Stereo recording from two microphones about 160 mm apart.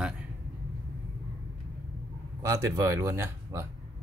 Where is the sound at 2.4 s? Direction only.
20° right (ahead or behind).